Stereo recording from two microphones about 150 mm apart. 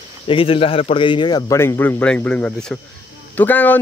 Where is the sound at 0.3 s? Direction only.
40° left (ahead or behind).